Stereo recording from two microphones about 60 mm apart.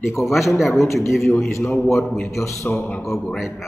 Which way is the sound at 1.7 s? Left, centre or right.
Left.